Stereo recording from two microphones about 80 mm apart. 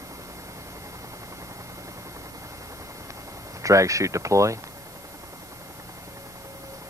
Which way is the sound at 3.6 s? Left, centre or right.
Right.